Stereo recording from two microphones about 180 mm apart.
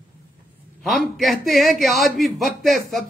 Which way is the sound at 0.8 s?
Centre (ahead or behind).